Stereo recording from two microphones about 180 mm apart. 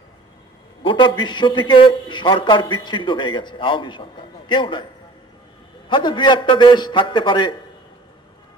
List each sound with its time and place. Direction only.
0.8 s a man's voice: 25° left (ahead or behind)
5.9 s a man's voice: 25° left (ahead or behind)